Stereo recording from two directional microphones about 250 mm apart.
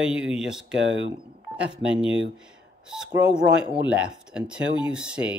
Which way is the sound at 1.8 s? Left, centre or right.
Centre.